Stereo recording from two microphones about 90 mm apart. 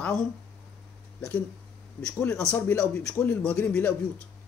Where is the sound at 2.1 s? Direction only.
10° left (ahead or behind).